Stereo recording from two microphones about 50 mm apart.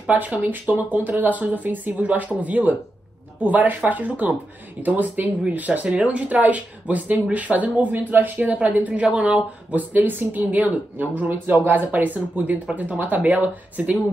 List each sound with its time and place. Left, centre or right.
0.1 s speech: right
8.7 s speech: right